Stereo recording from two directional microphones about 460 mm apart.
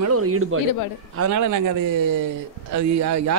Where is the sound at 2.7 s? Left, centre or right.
Right.